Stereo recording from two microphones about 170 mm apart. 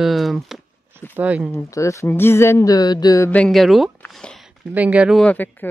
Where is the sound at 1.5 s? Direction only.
20° left (ahead or behind).